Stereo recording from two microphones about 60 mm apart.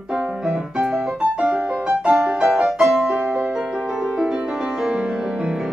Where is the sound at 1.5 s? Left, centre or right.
Right.